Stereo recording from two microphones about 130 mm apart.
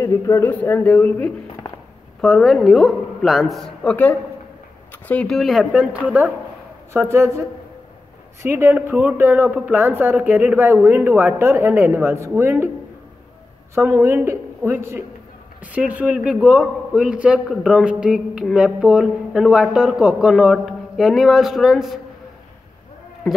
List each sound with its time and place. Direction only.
0.0 s speech: 20° left (ahead or behind)
2.2 s a man's voice: centre (ahead or behind); by 12.7 s 15° right (ahead or behind)
13.7 s a man's voice: 15° right (ahead or behind)